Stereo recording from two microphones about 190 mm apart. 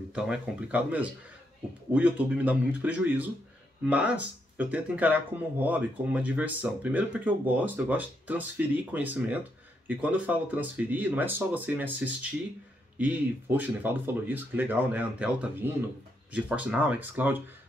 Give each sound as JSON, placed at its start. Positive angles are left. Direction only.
{"t": 0.1, "sound": "speech", "side_deg": -5}